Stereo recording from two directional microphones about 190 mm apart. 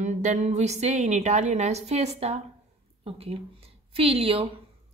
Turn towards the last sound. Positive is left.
turn(degrees=-30)  # may be behind; listen again after turning